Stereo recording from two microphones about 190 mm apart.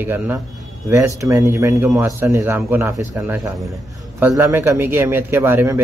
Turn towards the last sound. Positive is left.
turn(degrees=-10)  # may be behind; listen again after turning